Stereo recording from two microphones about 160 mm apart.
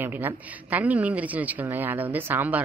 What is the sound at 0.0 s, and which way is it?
A woman's voice, 10° right (ahead or behind).